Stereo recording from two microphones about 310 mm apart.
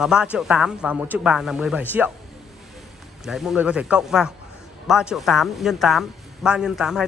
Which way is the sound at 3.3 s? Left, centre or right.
Centre.